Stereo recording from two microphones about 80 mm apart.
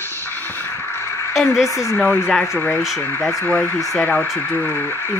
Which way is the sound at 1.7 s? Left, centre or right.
Left.